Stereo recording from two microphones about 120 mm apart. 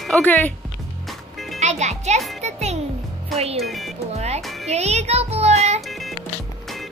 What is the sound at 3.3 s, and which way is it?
Speech, 60° right (ahead or behind).